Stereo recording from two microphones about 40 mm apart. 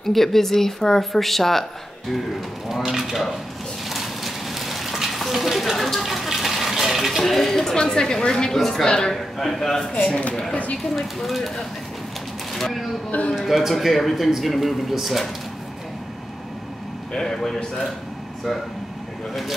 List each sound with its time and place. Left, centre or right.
0.0 s speech: centre
2.7 s a man's voice: centre
3.9 s rain on surface: centre
5.7 s water: centre
8.5 s speech: centre
8.8 s a man's voice: left
9.1 s speech: centre
10.5 s speech: left
11.0 s a man's voice: centre
12.5 s a man's voice: centre
17.1 s speech: centre